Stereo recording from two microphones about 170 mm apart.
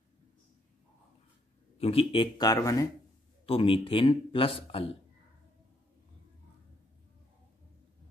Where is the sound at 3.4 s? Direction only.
30° left (ahead or behind).